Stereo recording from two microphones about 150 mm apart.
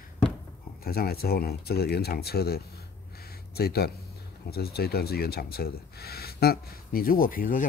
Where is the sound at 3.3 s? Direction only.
90° left.